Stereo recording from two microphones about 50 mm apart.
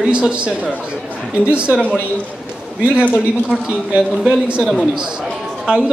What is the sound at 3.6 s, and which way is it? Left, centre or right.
A woman's voice, right.